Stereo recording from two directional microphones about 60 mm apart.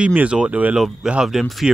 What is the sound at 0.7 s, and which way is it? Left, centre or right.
Speech, centre.